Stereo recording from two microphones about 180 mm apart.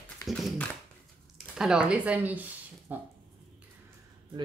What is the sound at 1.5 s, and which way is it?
Speech, 5° right (ahead or behind).